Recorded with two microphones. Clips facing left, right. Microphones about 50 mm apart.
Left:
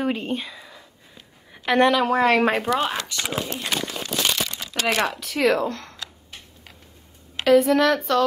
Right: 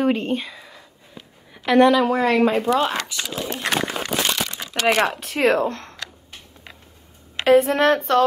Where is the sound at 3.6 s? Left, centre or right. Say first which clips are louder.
Right 5 dB; right.